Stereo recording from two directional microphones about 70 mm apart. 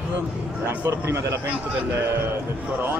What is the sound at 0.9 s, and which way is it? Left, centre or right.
Speech, right.